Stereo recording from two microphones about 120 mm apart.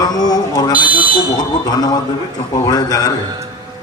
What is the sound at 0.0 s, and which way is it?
Speech, 35° left (ahead or behind).